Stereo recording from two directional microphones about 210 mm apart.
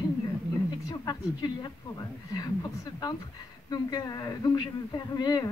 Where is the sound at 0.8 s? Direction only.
20° left (ahead or behind).